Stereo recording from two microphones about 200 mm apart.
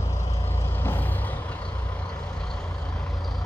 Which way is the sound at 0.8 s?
10° left (ahead or behind).